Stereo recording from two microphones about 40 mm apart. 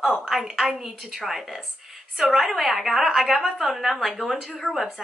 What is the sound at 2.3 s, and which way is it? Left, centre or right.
A woman's voice, centre.